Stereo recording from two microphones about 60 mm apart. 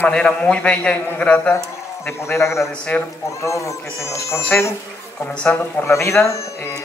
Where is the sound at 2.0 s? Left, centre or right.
Left.